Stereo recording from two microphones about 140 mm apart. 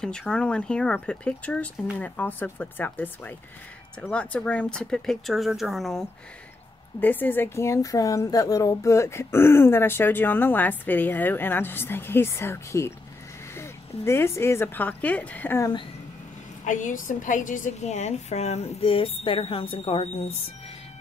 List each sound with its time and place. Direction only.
0.0 s a woman's voice: 5° left (ahead or behind)
7.0 s a woman's voice: 15° left (ahead or behind)
16.6 s a woman's voice: 65° left (ahead or behind); by 20.4 s 45° left (ahead or behind)